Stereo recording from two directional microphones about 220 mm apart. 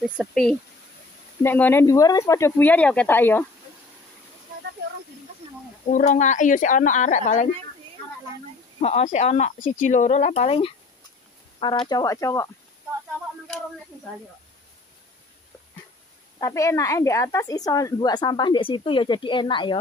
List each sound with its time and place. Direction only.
0.2 s speech: centre (ahead or behind)
5.9 s speech: 35° left (ahead or behind)
8.8 s speech: 30° left (ahead or behind)
11.8 s speech: 15° left (ahead or behind)
16.3 s speech: 15° left (ahead or behind)